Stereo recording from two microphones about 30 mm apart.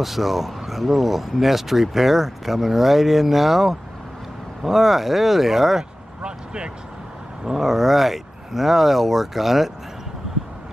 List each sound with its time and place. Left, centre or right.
0.0 s speech: centre
6.2 s speech: right
7.4 s speech: centre